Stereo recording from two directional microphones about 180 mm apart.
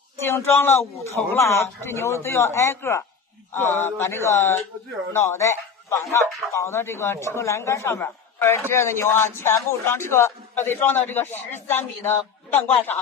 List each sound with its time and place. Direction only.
0.2 s a man's voice: 15° left (ahead or behind)